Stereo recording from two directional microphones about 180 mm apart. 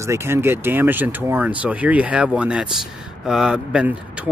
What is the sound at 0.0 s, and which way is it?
Speech, 15° right (ahead or behind).